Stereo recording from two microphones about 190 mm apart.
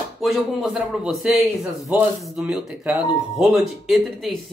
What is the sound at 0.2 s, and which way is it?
Speech, centre (ahead or behind).